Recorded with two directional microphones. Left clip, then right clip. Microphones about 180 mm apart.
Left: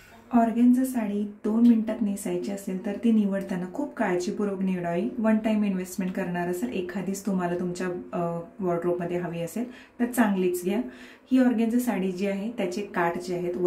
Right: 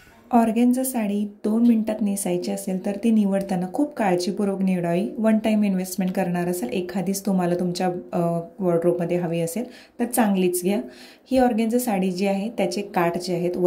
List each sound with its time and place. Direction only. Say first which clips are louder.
0.3 s speech: right 3 dB; 40° right (ahead or behind)